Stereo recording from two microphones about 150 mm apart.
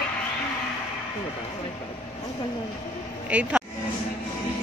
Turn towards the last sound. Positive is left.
turn(degrees=-10)  # may be behind; listen again after turning